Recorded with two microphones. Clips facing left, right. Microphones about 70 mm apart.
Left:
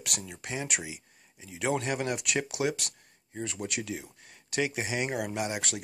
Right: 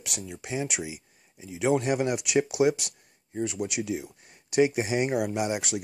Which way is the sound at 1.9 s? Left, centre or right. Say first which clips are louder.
Right 5 dB; centre.